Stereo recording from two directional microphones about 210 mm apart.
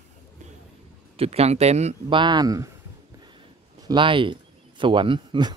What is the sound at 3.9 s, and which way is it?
Speech, 25° right (ahead or behind).